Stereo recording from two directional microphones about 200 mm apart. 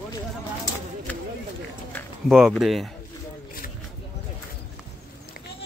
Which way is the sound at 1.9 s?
5° left (ahead or behind).